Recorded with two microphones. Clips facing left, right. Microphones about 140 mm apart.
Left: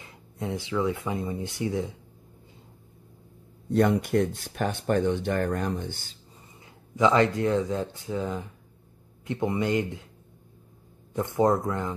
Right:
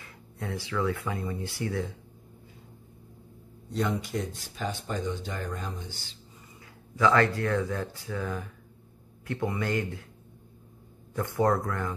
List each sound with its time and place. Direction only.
0.0 s speech: 20° left (ahead or behind)
3.7 s speech: 60° left (ahead or behind)
6.6 s speech: 20° left (ahead or behind)
11.1 s speech: 20° left (ahead or behind)